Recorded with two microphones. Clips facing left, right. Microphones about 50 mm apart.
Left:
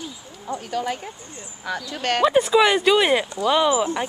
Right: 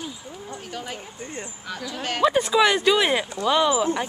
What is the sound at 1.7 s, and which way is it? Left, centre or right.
Speech, left.